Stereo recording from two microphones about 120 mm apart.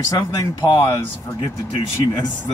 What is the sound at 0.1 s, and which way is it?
Speech, 30° left (ahead or behind).